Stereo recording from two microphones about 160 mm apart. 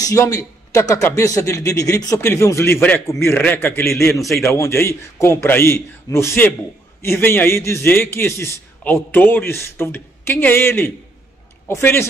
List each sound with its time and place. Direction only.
0.0 s a man's voice: 20° left (ahead or behind)
4.1 s a man's voice: centre (ahead or behind)
4.6 s a man's voice: 15° left (ahead or behind)